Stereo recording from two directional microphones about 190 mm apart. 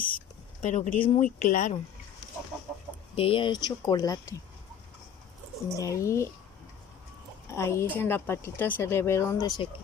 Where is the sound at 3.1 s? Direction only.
30° left (ahead or behind).